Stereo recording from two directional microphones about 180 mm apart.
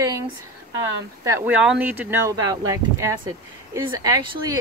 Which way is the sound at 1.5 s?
5° right (ahead or behind).